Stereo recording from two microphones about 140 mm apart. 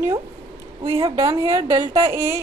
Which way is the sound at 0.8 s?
40° right (ahead or behind).